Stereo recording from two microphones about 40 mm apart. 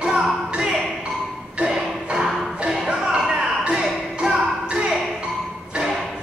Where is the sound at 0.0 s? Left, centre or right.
Right.